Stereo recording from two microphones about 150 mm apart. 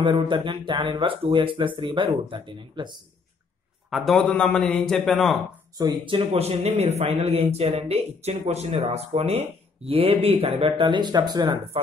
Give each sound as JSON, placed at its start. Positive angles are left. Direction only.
{"t": 0.0, "sound": "speech", "side_deg": -35}
{"t": 3.9, "sound": "a man's voice", "side_deg": 0}
{"t": 5.8, "sound": "speech", "side_deg": -30}